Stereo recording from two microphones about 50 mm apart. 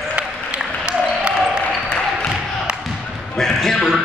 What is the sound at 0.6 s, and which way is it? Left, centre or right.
Applause, centre.